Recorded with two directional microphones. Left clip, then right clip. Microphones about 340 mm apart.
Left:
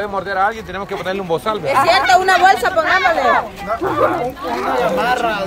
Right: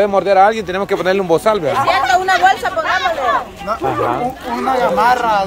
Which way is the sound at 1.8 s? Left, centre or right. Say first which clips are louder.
Left 1 dB; left.